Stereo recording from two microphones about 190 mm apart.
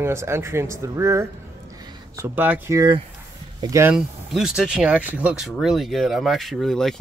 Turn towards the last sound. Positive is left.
turn(degrees=0)  # may be behind; listen again after turning